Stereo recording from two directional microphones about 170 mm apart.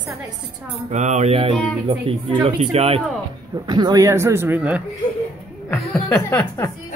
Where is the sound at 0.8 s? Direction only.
40° right (ahead or behind).